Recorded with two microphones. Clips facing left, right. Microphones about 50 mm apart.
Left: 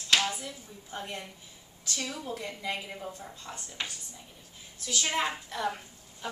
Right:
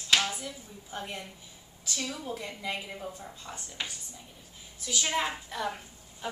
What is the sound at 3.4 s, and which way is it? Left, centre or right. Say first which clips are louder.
Speech: even; centre.